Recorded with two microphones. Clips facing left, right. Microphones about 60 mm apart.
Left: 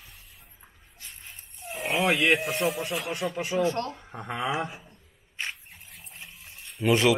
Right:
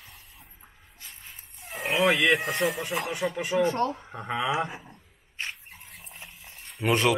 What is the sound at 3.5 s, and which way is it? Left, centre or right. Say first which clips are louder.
Speech: right 1 dB; centre.